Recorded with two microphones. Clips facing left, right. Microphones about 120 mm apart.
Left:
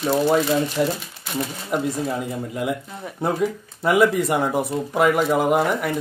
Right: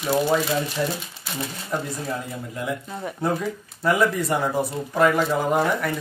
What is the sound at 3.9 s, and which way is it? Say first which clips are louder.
Speech: left 3 dB; 15° left (ahead or behind).